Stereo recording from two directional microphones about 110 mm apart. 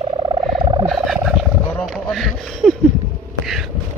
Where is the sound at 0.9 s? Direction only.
5° right (ahead or behind).